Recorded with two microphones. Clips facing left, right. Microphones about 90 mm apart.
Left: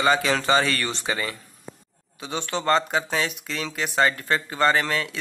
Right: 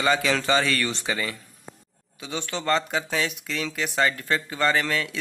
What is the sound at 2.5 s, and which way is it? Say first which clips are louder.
A man's voice: left 3 dB; 25° left (ahead or behind).